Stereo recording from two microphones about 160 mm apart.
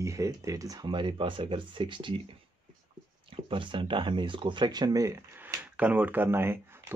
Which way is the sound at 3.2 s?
35° right (ahead or behind).